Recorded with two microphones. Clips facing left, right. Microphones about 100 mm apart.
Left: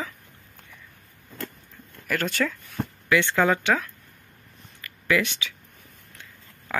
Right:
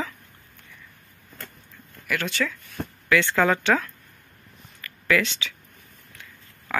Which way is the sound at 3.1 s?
20° left (ahead or behind).